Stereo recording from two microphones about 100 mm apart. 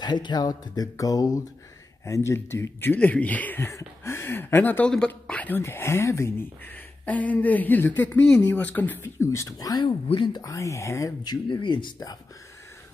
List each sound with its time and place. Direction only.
0.0 s speech: 45° left (ahead or behind)
10.0 s speech: 55° left (ahead or behind)
10.4 s speech: 30° left (ahead or behind)
11.2 s speech: 55° left (ahead or behind)